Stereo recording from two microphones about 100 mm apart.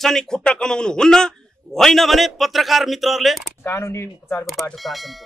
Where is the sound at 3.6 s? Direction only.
25° left (ahead or behind).